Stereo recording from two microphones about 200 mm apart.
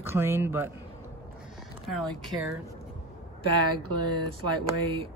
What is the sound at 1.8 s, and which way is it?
Speech, centre (ahead or behind).